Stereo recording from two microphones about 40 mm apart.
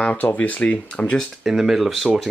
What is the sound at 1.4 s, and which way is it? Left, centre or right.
Speech, centre.